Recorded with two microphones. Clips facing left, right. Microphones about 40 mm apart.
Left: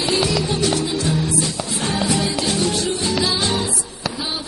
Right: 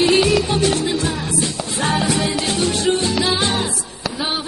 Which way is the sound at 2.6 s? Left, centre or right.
Right.